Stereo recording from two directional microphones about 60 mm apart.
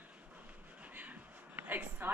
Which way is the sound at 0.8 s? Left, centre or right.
Right.